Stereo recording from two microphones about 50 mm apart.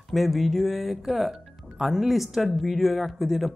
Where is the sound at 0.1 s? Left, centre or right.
Centre.